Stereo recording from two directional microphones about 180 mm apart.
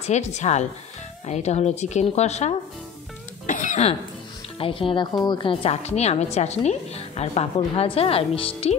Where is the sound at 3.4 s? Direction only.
45° left (ahead or behind).